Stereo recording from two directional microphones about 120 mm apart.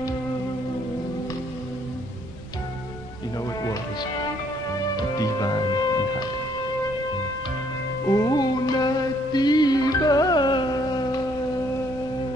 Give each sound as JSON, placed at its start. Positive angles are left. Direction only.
{"t": 3.6, "sound": "music", "side_deg": 35}
{"t": 8.1, "sound": "music", "side_deg": 30}